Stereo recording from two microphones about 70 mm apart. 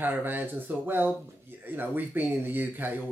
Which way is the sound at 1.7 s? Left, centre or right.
Right.